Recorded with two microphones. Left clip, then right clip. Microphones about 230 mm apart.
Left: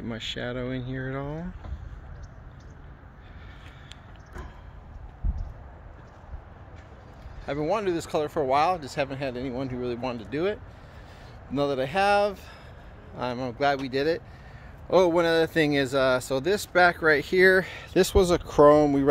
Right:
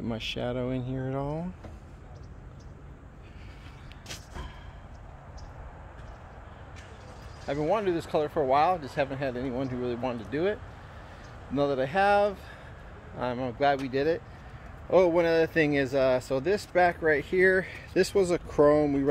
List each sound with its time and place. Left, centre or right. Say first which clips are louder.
0.0 s speech: even; centre
7.4 s speech: left 1 dB; centre